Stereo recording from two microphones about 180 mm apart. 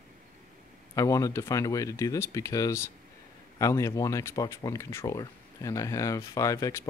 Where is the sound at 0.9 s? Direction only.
20° left (ahead or behind).